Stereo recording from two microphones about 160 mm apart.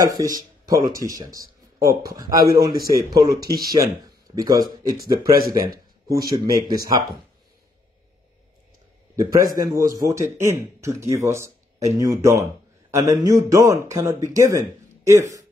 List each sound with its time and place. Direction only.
0.0 s speech: 20° right (ahead or behind)
9.1 s a man's voice: 20° right (ahead or behind)